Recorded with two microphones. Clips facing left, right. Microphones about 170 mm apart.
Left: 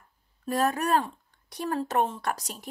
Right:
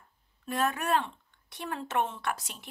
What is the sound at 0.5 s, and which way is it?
Speech, 40° left (ahead or behind).